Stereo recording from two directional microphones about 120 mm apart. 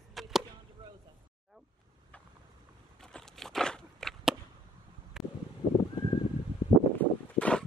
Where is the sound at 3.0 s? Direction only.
5° left (ahead or behind).